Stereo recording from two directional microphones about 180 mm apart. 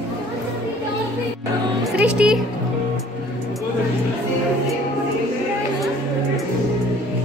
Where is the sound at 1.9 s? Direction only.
5° right (ahead or behind).